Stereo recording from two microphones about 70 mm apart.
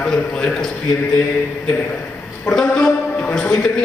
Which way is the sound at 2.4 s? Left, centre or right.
Centre.